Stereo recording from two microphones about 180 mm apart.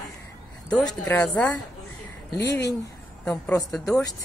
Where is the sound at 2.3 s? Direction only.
20° left (ahead or behind).